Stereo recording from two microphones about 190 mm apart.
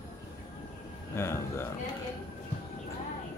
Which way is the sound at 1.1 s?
15° left (ahead or behind).